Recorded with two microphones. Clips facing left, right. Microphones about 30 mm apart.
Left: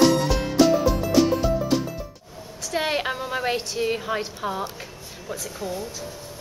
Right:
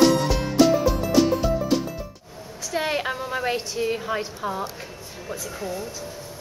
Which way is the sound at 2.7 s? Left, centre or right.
Centre.